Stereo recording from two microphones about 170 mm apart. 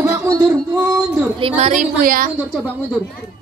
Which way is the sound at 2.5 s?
Centre (ahead or behind).